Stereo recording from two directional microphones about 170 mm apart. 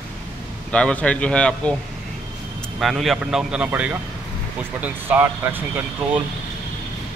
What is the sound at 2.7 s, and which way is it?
Speech, centre (ahead or behind).